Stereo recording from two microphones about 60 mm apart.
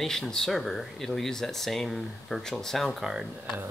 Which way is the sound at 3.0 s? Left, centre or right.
Centre.